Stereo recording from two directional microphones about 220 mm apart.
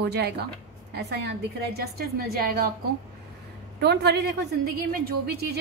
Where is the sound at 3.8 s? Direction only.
50° right (ahead or behind).